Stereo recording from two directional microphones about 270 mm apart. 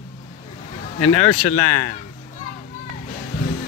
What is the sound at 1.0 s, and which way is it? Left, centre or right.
Speech, left.